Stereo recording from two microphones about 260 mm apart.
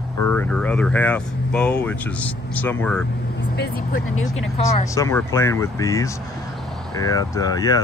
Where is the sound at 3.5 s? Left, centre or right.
Left.